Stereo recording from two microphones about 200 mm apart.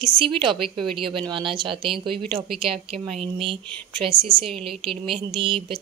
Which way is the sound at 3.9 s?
25° right (ahead or behind).